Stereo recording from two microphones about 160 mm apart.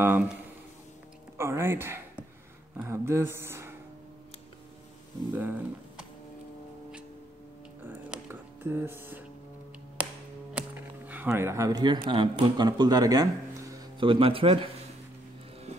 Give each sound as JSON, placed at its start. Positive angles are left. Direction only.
{"t": 0.0, "sound": "speech", "side_deg": -10}
{"t": 1.4, "sound": "speech", "side_deg": -15}
{"t": 5.3, "sound": "speech", "side_deg": -10}
{"t": 7.8, "sound": "music", "side_deg": -15}
{"t": 11.1, "sound": "speech", "side_deg": -15}